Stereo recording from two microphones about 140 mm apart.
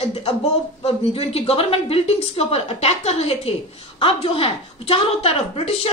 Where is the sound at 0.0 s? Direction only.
45° left (ahead or behind).